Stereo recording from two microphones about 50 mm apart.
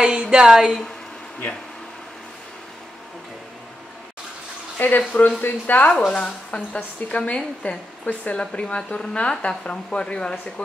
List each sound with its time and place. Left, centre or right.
0.0 s speech: centre
4.7 s speech: left
5.9 s a woman's voice: centre